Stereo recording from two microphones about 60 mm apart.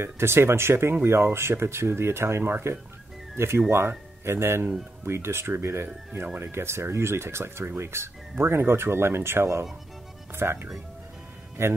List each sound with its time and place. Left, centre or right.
0.0 s speech: right